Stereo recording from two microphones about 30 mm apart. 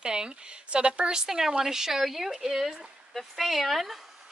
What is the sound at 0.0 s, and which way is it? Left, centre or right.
Speech, right.